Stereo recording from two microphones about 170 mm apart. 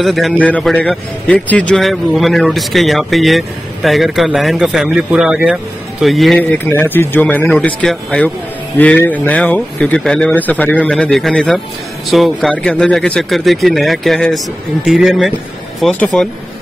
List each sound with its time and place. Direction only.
0.0 s a man's voice: centre (ahead or behind)
6.7 s a man's voice: 10° left (ahead or behind)